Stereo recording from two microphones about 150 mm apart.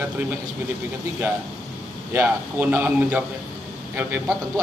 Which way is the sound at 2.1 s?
15° right (ahead or behind).